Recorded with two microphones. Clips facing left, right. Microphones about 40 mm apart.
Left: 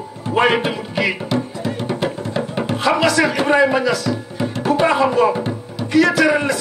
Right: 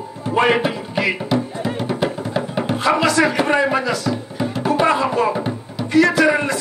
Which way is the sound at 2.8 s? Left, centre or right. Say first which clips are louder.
Even; left.